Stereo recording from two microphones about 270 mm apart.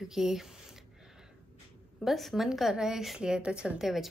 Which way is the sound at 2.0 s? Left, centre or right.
Centre.